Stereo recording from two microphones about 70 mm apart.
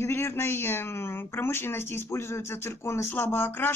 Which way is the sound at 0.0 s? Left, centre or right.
Left.